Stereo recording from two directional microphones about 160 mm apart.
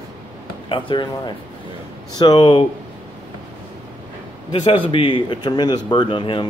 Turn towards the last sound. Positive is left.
turn(degrees=30)  # may be behind; listen again after turning